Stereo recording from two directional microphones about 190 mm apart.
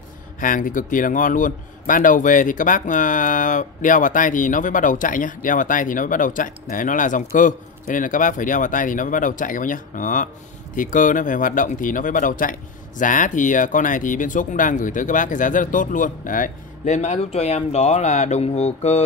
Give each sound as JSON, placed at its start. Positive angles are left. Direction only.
{"t": 0.4, "sound": "a man's voice", "side_deg": 45}